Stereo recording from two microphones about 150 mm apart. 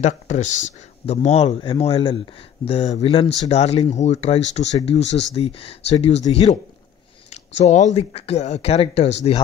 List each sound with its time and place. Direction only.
0.0 s speech: 50° left (ahead or behind)